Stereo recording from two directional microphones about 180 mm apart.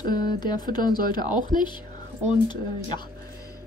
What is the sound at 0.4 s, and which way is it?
A woman's voice, 25° left (ahead or behind).